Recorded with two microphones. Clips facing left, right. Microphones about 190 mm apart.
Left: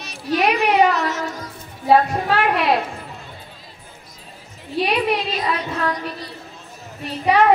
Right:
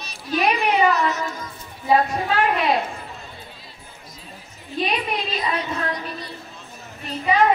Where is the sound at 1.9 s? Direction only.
70° left (ahead or behind).